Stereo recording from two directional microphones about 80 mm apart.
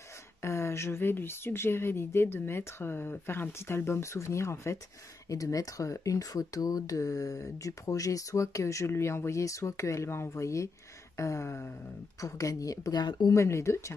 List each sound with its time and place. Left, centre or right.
0.4 s speech: left
13.3 s speech: left